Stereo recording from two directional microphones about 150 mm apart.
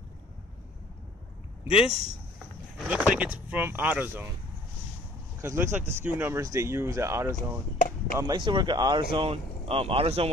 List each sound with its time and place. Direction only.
1.7 s speech: 40° left (ahead or behind)
2.9 s speech: 10° right (ahead or behind)
5.4 s speech: 15° right (ahead or behind)
8.2 s speech: 30° right (ahead or behind)